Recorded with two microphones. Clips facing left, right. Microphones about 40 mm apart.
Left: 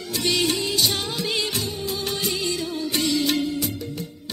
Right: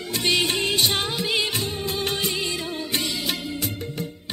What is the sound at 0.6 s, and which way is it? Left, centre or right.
Music, right.